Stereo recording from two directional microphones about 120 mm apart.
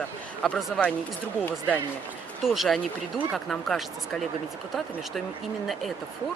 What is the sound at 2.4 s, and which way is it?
Speech, centre (ahead or behind).